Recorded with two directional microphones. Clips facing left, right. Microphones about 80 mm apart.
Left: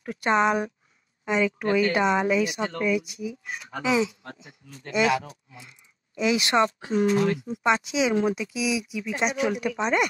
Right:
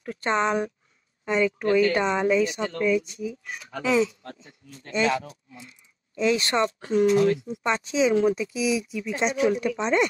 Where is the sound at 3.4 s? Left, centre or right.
Left.